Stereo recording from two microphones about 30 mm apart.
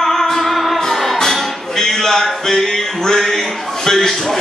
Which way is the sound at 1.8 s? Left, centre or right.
Centre.